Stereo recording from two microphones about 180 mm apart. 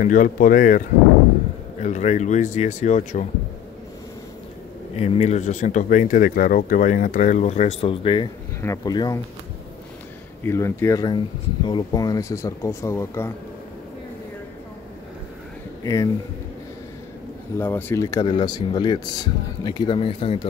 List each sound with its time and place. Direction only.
0.0 s a man's voice: 45° left (ahead or behind)
4.9 s speech: 35° left (ahead or behind)
8.5 s speech: 20° left (ahead or behind)
10.4 s speech: 15° left (ahead or behind)
15.8 s speech: 20° left (ahead or behind)
17.6 s speech: 10° left (ahead or behind); by 20.3 s 30° left (ahead or behind)